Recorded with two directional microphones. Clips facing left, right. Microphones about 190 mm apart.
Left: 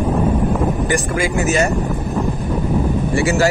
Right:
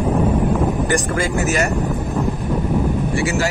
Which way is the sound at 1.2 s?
15° left (ahead or behind).